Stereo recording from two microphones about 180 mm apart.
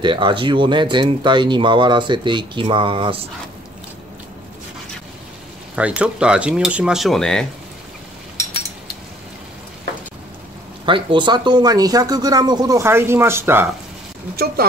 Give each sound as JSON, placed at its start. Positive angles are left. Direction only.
{"t": 0.0, "sound": "speech", "side_deg": -25}
{"t": 5.8, "sound": "speech", "side_deg": -5}
{"t": 10.9, "sound": "speech", "side_deg": -25}
{"t": 14.3, "sound": "speech", "side_deg": -60}